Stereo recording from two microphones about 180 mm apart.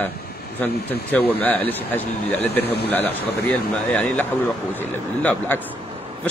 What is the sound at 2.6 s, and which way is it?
Speech, 65° left (ahead or behind).